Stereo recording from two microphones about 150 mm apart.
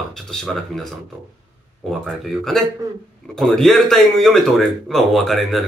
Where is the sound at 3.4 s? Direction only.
Centre (ahead or behind).